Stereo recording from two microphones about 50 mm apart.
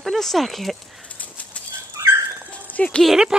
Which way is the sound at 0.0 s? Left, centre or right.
Centre.